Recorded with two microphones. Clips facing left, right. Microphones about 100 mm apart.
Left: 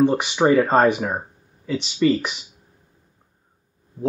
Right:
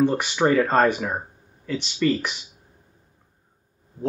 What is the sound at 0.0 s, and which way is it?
Speech, 15° left (ahead or behind).